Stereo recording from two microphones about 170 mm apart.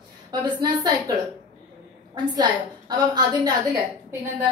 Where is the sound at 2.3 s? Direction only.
25° right (ahead or behind).